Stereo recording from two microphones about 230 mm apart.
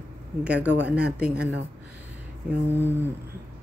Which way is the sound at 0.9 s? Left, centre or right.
Centre.